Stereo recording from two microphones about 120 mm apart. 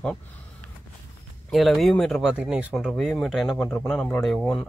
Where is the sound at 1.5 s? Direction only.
Centre (ahead or behind).